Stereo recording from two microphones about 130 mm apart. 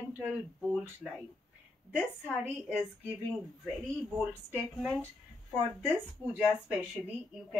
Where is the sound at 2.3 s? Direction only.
10° right (ahead or behind).